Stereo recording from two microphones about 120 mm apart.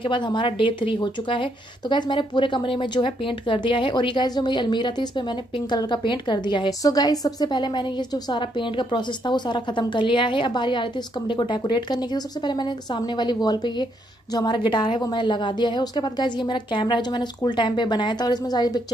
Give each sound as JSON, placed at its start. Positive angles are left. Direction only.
{"t": 0.0, "sound": "a woman's voice", "side_deg": 40}